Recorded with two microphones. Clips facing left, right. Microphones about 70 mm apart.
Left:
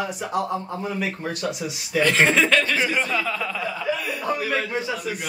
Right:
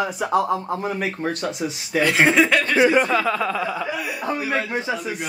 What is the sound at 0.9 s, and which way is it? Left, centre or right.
A man's voice, right.